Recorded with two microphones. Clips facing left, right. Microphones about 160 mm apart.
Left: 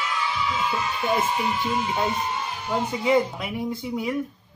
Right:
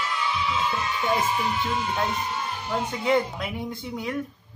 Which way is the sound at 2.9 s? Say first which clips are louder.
Left 2 dB; centre (ahead or behind).